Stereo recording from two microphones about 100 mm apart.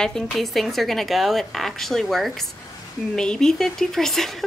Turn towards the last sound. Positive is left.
turn(degrees=5)  # may be behind; listen again after turning